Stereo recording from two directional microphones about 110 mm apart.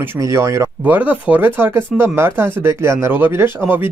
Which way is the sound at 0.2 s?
30° right (ahead or behind).